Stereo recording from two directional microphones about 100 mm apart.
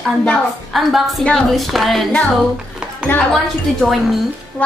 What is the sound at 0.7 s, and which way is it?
A woman's voice, centre (ahead or behind).